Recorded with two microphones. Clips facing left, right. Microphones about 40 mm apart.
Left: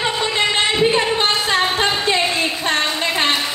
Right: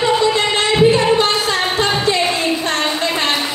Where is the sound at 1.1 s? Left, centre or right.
Left.